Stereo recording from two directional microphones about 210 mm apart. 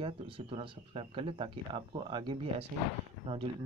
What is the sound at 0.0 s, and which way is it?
Speech, 25° right (ahead or behind).